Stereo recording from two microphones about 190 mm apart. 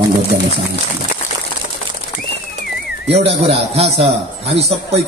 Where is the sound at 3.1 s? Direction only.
30° right (ahead or behind).